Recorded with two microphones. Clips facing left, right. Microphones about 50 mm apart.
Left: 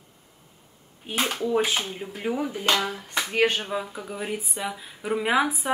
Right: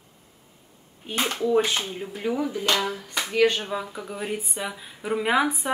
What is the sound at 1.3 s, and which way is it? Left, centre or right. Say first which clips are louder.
Speech: right 3 dB; centre.